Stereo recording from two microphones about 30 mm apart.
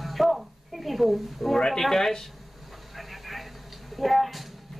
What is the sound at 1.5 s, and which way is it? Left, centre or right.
Speech, centre.